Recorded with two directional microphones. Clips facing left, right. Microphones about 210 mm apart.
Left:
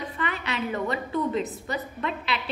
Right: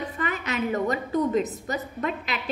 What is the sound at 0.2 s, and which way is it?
A woman's voice, 45° right (ahead or behind).